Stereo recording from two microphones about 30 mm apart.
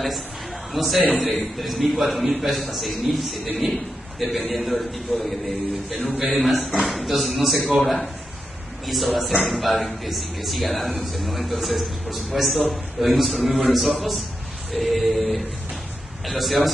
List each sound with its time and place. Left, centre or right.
0.7 s speech: centre
5.9 s speech: centre